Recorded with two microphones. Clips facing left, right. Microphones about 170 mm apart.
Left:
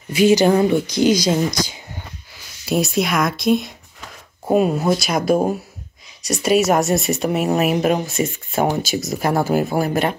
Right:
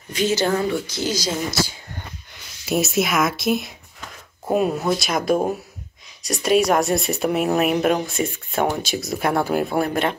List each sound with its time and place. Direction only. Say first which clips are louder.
0.1 s speech: left 7 dB; 15° left (ahead or behind)
2.3 s speech: left 2 dB; centre (ahead or behind)